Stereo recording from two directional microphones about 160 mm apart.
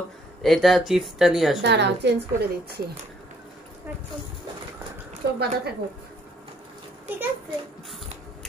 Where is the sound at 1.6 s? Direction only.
90° right.